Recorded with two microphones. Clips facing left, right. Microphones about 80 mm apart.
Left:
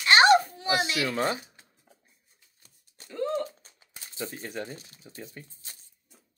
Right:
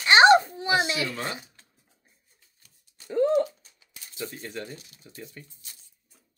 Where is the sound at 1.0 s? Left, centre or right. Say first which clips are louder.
Left 5 dB; left.